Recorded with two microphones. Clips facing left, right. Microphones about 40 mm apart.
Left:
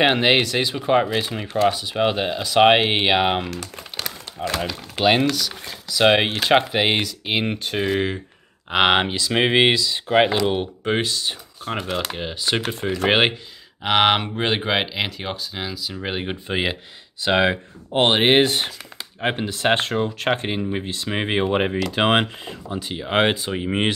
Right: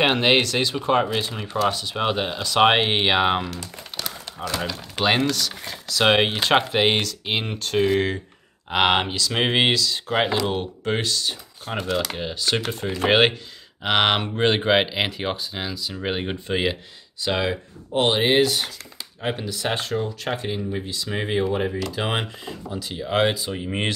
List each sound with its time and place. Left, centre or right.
0.0 s speech: centre
4.6 s speech: centre
16.4 s speech: centre
17.2 s speech: left
22.4 s speech: left